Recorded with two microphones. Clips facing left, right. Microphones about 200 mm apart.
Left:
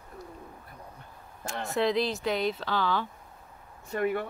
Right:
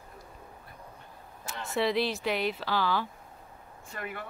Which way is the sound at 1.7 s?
5° right (ahead or behind).